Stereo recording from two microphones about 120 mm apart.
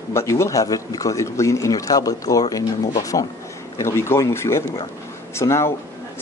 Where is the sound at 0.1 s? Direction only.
25° left (ahead or behind).